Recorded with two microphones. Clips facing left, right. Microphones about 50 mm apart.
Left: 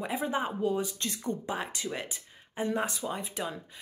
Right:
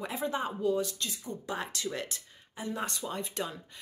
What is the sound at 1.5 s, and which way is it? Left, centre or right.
Speech, centre.